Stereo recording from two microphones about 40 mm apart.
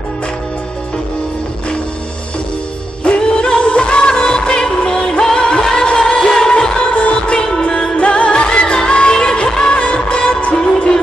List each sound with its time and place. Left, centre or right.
3.0 s music: left
6.9 s music: left